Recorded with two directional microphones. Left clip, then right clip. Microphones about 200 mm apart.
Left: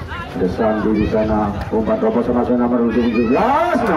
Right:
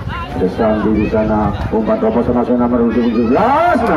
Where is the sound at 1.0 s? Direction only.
40° left (ahead or behind).